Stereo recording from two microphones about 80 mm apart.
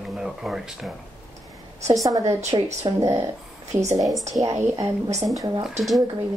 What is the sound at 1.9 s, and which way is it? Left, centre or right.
A woman's voice, right.